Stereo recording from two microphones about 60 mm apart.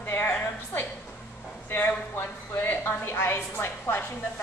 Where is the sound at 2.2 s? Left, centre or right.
Left.